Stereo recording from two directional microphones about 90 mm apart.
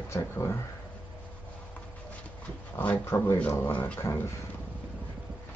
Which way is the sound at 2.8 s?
25° left (ahead or behind).